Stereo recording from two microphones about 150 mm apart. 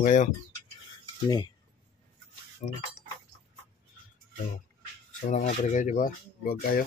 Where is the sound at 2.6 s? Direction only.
50° left (ahead or behind).